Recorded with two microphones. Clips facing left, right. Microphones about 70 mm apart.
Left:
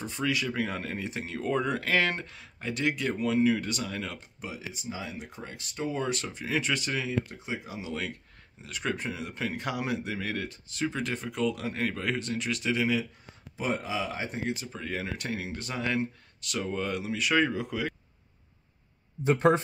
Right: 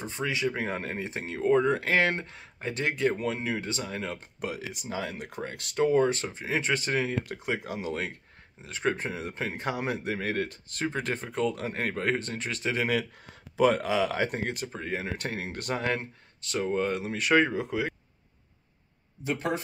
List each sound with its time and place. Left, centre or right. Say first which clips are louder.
0.0 s speech: right 1 dB; right
4.4 s speech: right 6 dB; right
5.9 s speech: right 7 dB; right
7.2 s speech: right 5 dB; right
7.9 s speech: right 2 dB; right
13.2 s speech: right 11 dB; right
14.3 s speech: right 1 dB; right
14.7 s speech: right 2 dB; right
19.2 s speech: left 7 dB; left